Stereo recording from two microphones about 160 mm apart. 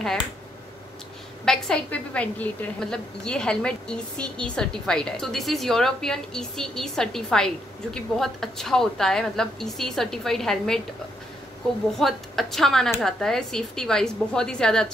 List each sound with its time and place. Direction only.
1.4 s a woman's voice: 5° left (ahead or behind)
12.0 s a woman's voice: centre (ahead or behind)